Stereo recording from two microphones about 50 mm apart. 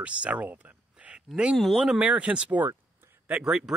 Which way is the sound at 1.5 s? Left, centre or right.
Centre.